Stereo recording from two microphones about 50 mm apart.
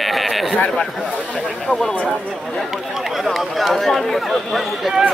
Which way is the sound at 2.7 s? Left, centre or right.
Centre.